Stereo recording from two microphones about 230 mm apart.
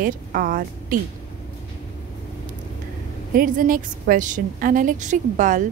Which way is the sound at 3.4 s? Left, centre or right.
Right.